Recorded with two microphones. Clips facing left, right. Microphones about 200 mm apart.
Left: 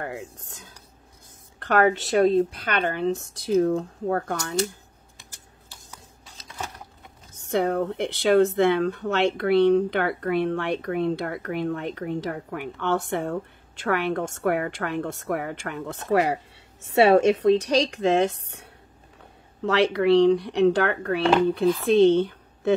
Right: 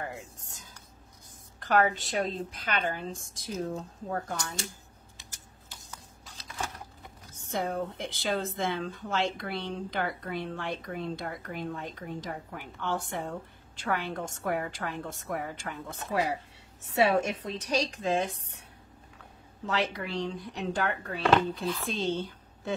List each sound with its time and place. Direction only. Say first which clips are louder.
0.0 s speech: left 6 dB; 65° left (ahead or behind)
7.4 s speech: left 8 dB; 70° left (ahead or behind)